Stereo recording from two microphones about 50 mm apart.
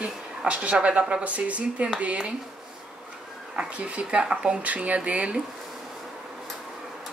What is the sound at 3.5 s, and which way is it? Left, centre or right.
Speech, right.